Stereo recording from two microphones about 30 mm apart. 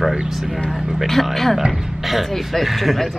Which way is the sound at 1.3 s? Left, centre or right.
Centre.